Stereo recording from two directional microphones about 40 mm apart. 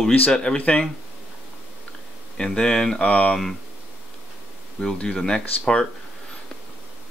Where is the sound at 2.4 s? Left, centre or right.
Centre.